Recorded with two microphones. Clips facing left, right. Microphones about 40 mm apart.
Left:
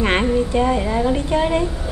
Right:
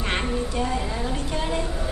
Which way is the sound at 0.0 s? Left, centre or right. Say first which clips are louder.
Left 8 dB; left.